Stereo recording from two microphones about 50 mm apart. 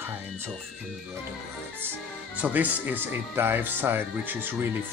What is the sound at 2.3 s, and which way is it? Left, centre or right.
Speech, right.